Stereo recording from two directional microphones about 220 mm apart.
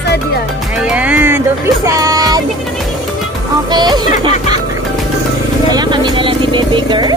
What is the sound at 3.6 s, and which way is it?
Speech, 20° right (ahead or behind).